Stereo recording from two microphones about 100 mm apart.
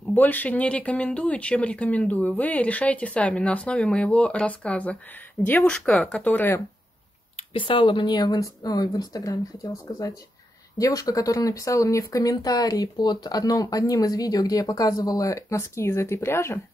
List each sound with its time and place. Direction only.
0.1 s speech: 15° left (ahead or behind)
7.5 s speech: 60° left (ahead or behind); by 16.5 s 25° left (ahead or behind)